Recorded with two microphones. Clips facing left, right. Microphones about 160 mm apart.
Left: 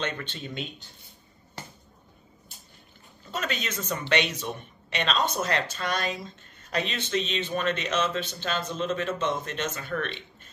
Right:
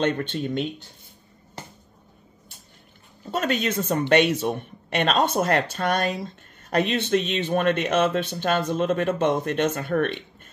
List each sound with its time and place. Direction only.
0.0 s speech: 45° right (ahead or behind)
3.3 s speech: 50° right (ahead or behind)